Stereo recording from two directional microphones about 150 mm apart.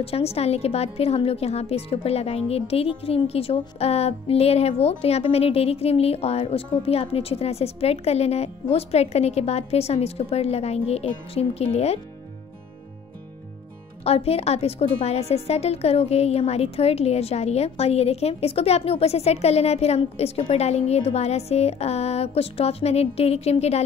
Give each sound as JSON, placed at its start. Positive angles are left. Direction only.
{"t": 0.0, "sound": "a woman's voice", "side_deg": 40}
{"t": 14.0, "sound": "a woman's voice", "side_deg": 40}